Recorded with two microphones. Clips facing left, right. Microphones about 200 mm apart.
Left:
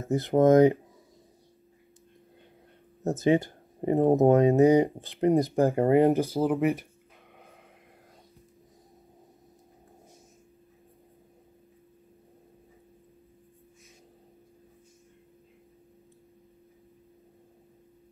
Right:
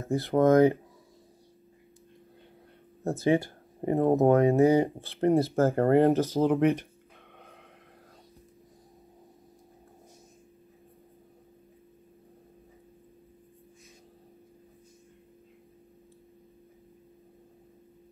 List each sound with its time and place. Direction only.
0.0 s speech: 20° left (ahead or behind)
3.0 s speech: 20° left (ahead or behind); by 6.9 s centre (ahead or behind)